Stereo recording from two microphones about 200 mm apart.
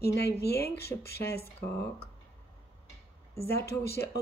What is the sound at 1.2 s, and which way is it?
Speech, 15° left (ahead or behind).